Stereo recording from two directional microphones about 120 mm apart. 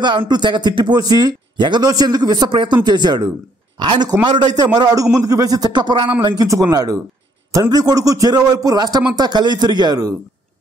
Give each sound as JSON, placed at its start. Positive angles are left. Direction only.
{"t": 0.0, "sound": "a man's voice", "side_deg": -40}